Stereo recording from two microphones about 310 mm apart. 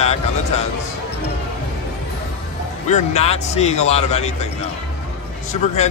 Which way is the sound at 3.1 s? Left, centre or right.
Left.